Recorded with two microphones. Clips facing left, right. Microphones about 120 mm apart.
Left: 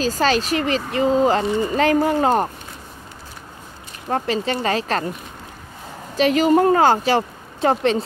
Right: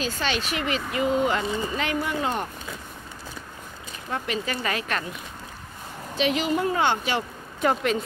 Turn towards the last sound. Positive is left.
turn(degrees=30)  # may be behind; listen again after turning